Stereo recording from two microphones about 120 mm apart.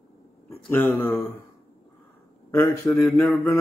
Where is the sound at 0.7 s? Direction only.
15° left (ahead or behind).